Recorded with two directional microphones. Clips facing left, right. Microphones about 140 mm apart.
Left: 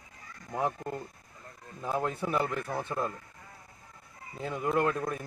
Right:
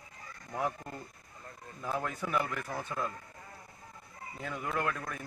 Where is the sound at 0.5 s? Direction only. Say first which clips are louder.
Left 4 dB; 25° left (ahead or behind).